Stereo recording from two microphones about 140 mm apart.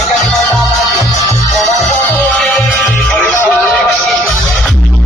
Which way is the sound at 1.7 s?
55° left (ahead or behind).